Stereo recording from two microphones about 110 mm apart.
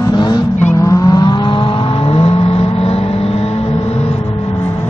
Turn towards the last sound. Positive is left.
turn(degrees=65)  # may be behind; listen again after turning